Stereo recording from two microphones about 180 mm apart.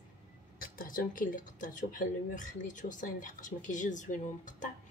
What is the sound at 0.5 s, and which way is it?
Speech, 50° left (ahead or behind).